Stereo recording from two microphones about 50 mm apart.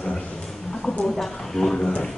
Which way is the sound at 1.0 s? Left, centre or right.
Centre.